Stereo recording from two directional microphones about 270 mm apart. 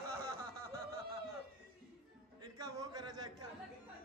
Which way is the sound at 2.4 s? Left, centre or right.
Centre.